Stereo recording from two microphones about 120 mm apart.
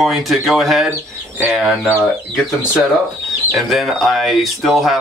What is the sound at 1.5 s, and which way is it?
Speech, 5° right (ahead or behind).